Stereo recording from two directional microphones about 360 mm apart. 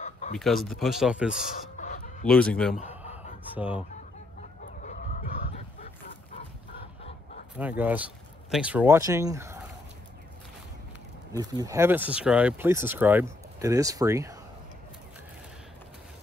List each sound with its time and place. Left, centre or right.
0.0 s a sound: centre
0.4 s speech: centre
1.8 s chicken: centre
2.2 s speech: centre
2.7 s a sound: centre
3.5 s speech: centre
4.4 s chicken: left
7.0 s fowl: centre
7.5 s speech: centre
11.3 s speech: centre